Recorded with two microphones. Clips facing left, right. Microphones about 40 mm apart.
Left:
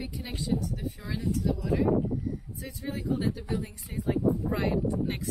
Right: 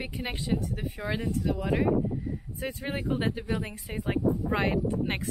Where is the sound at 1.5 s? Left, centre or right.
Right.